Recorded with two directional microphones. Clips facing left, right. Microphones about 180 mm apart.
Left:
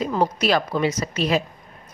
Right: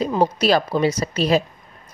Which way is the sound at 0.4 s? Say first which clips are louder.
Right 3 dB; 35° right (ahead or behind).